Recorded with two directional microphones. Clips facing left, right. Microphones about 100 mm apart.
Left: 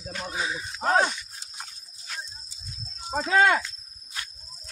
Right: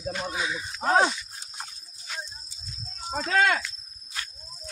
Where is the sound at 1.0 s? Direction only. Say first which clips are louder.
Right 1 dB; 10° right (ahead or behind).